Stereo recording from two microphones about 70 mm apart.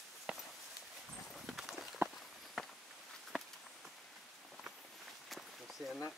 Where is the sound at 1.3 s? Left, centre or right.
Centre.